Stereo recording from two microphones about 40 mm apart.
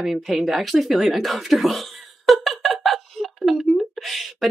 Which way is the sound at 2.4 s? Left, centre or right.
Centre.